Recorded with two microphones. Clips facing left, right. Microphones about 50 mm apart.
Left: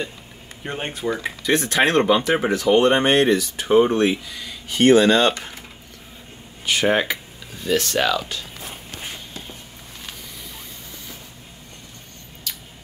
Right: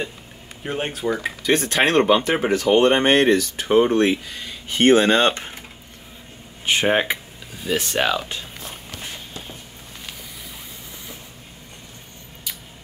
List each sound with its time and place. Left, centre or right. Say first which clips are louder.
0.7 s speech: right 2 dB; centre
1.4 s speech: even; right
6.6 s speech: even; right
7.5 s speech: left 2 dB; centre